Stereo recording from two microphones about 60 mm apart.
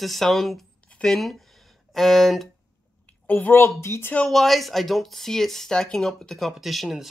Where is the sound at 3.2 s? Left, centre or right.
Left.